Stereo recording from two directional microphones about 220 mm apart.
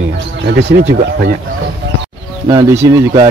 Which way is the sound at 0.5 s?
50° right (ahead or behind).